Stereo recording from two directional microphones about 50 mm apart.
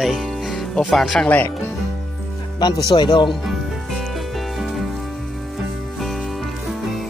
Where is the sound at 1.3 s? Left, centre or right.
Left.